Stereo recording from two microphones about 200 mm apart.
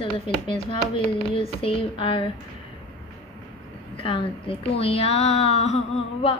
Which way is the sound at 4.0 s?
25° left (ahead or behind).